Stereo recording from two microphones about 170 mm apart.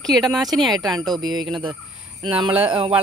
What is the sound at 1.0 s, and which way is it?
Speech, 25° right (ahead or behind).